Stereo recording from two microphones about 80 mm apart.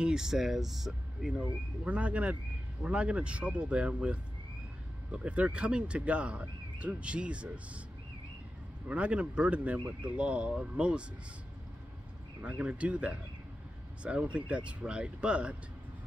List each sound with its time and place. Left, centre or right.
0.0 s speech: centre
1.9 s speech: centre
8.8 s speech: centre
12.4 s speech: centre